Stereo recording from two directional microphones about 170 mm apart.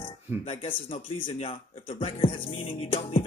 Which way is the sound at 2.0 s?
35° left (ahead or behind).